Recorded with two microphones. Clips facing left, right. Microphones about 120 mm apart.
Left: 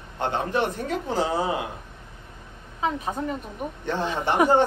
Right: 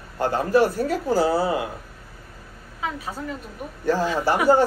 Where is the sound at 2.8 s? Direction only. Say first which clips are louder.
Left 3 dB; 25° left (ahead or behind).